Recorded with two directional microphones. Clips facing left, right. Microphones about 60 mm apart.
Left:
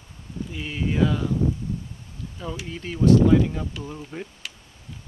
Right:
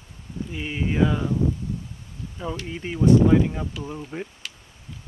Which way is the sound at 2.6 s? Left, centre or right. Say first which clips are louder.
Even; centre.